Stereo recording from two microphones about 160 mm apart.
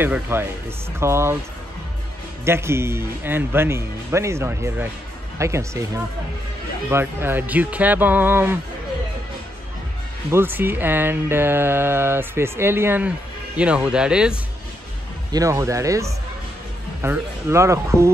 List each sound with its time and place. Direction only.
0.0 s speech: 15° right (ahead or behind)
2.4 s speech: 15° right (ahead or behind)
6.9 s speech: 15° right (ahead or behind)
10.3 s speech: 15° right (ahead or behind)
15.3 s speech: 20° right (ahead or behind)